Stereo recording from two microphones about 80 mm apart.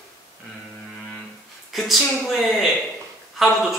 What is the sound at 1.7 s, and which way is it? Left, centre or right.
A man's voice, centre.